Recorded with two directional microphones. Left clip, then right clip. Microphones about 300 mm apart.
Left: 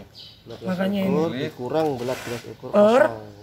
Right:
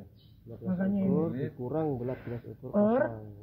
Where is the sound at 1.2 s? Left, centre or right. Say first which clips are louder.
Left 8 dB; centre.